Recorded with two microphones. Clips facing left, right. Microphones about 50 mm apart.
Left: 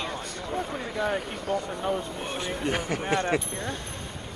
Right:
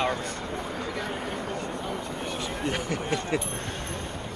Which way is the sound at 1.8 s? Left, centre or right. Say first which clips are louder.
Left 3 dB; left.